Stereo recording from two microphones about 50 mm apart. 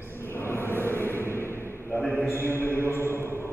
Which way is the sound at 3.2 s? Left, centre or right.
Right.